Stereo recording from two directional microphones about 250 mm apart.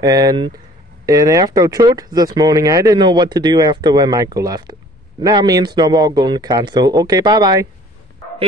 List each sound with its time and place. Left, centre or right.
0.0 s speech: centre